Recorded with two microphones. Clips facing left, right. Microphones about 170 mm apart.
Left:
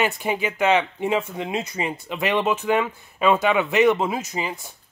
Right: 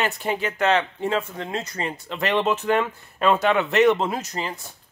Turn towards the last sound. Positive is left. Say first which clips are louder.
# left 1 dB
turn(degrees=5)  # may be behind; listen again after turning